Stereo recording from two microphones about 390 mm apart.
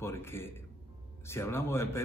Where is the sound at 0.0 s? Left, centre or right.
Centre.